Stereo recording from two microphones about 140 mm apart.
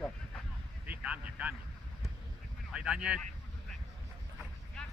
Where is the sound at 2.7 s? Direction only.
5° right (ahead or behind).